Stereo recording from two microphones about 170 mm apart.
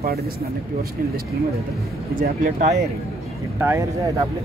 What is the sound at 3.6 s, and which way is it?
Speech, 15° right (ahead or behind).